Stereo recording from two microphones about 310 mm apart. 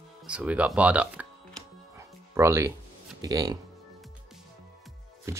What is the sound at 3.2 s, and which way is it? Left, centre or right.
Speech, centre.